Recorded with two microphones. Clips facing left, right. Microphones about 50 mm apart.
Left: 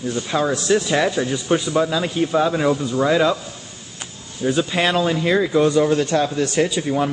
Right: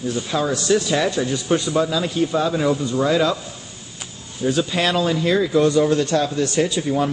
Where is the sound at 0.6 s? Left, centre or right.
Centre.